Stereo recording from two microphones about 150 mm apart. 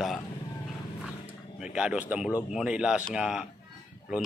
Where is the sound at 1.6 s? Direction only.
5° right (ahead or behind).